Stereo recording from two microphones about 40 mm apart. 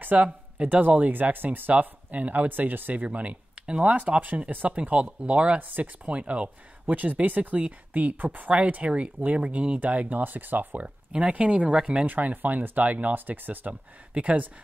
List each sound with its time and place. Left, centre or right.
0.0 s speech: right
1.3 s speech: right
1.7 s speech: right
3.1 s speech: right
8.5 s speech: right
11.1 s speech: right
11.7 s speech: right
12.1 s speech: right